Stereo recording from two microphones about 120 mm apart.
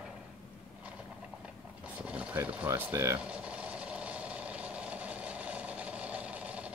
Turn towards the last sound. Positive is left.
turn(degrees=-10)  # may be behind; listen again after turning